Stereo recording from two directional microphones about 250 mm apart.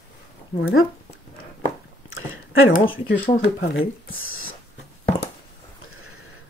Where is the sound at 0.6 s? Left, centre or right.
Left.